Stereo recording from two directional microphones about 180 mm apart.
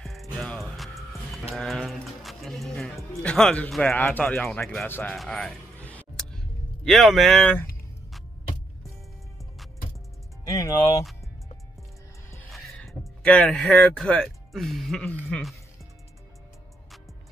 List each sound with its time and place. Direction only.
0.0 s music: centre (ahead or behind)
1.5 s speech: centre (ahead or behind)
5.1 s a sound: centre (ahead or behind)
10.5 s speech: 15° left (ahead or behind)
12.4 s speech: centre (ahead or behind)